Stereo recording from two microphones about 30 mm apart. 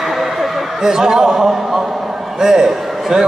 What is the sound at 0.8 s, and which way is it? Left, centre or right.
A man's voice, right.